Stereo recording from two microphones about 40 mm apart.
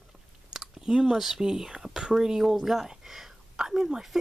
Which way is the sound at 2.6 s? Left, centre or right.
Centre.